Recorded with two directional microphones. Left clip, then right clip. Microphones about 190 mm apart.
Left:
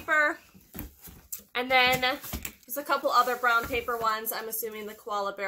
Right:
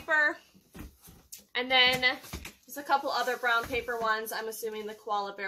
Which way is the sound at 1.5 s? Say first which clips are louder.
Left 1 dB; 20° left (ahead or behind).